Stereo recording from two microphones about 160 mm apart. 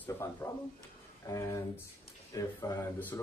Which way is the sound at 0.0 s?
15° left (ahead or behind).